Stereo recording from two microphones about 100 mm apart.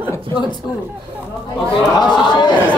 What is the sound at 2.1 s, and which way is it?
Speech, 50° left (ahead or behind).